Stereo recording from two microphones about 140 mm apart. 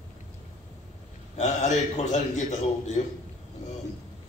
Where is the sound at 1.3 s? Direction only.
55° left (ahead or behind).